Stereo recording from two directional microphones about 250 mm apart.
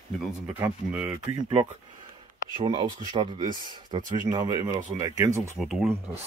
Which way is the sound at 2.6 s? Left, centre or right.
Centre.